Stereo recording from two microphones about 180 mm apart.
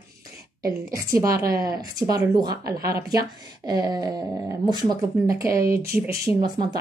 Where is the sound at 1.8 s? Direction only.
20° right (ahead or behind).